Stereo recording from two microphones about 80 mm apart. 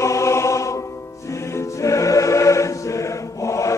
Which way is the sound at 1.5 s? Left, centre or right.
Left.